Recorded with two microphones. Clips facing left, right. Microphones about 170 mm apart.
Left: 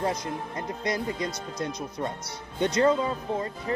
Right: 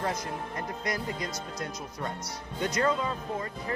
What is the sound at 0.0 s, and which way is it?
Speech, 20° left (ahead or behind).